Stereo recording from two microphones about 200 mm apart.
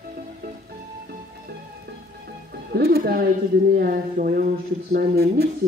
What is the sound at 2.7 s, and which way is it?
Speech, 50° right (ahead or behind).